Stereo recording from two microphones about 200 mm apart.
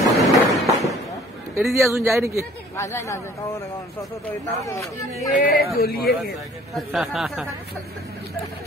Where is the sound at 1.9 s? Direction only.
15° right (ahead or behind).